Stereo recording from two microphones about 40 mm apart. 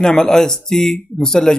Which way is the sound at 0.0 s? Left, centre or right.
Centre.